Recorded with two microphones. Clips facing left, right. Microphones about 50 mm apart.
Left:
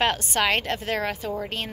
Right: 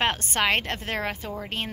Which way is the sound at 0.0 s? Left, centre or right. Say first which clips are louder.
Left 1 dB; right.